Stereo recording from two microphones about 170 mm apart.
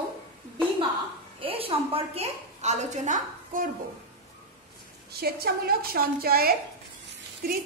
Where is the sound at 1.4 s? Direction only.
35° right (ahead or behind).